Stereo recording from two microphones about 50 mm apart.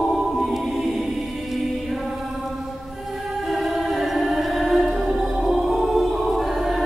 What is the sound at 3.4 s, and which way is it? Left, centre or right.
Music, centre.